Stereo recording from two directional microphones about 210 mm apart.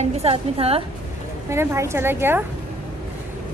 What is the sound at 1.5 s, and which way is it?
Speech, 15° right (ahead or behind).